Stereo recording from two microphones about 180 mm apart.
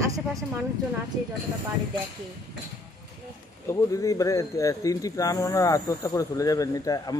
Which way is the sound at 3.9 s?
20° left (ahead or behind).